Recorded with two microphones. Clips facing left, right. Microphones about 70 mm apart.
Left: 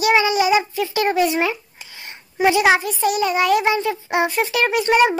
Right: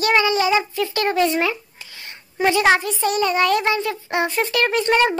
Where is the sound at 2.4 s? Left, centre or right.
Centre.